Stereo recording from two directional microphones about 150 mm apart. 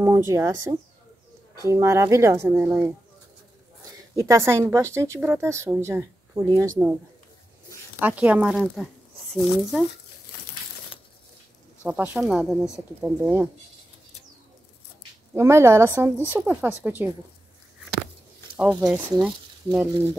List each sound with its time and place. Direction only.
0.0 s speech: 20° right (ahead or behind)
4.1 s speech: 20° right (ahead or behind)
8.0 s speech: 10° right (ahead or behind)
11.8 s speech: 10° right (ahead or behind)
12.7 s speech: 15° right (ahead or behind)
15.3 s speech: 15° right (ahead or behind)
18.6 s speech: 5° right (ahead or behind)